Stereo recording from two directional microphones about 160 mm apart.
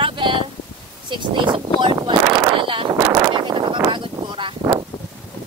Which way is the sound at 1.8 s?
30° right (ahead or behind).